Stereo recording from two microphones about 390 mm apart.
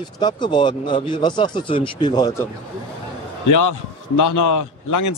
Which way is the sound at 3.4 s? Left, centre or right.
Left.